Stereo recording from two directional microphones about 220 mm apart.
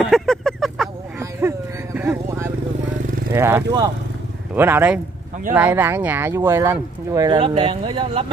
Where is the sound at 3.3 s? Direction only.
10° right (ahead or behind).